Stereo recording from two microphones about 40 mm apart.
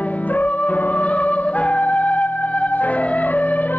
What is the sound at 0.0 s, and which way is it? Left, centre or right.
Music, left.